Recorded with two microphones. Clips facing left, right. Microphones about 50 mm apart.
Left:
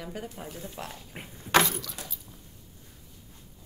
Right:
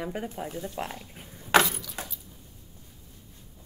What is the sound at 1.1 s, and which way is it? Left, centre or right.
Speech, left.